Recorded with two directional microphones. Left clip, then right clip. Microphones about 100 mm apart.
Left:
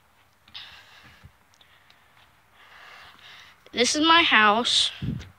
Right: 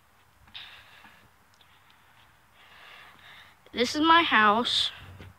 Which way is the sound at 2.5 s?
5° right (ahead or behind).